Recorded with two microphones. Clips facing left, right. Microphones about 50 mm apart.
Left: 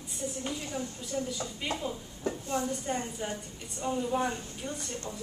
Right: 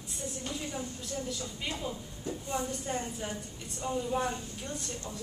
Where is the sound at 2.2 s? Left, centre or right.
Left.